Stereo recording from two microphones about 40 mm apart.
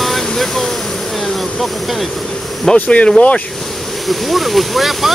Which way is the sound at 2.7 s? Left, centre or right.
Centre.